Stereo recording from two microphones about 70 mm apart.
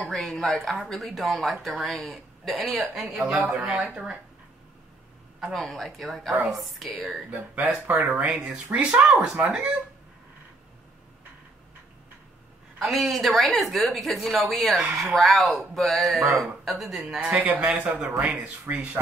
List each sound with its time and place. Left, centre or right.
0.0 s speech: centre
5.5 s speech: centre
7.2 s speech: right
12.7 s speech: centre
17.4 s speech: right
18.2 s speech: centre